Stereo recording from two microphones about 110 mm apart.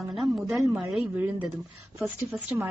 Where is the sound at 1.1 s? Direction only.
15° right (ahead or behind).